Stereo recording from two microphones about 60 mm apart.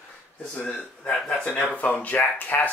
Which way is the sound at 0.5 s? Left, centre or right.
Centre.